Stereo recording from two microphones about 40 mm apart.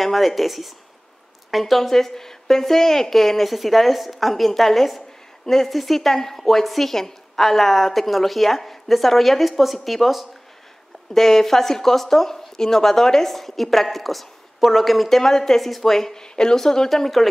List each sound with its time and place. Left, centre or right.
0.0 s a woman's voice: centre
11.1 s speech: centre